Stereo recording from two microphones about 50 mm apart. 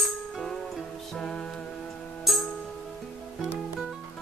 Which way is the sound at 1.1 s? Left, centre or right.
Centre.